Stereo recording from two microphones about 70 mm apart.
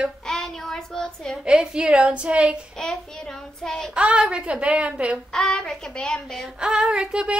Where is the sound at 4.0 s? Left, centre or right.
Centre.